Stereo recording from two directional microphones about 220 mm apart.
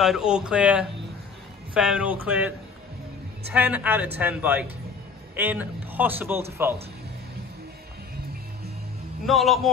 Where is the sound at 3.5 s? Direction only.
5° right (ahead or behind).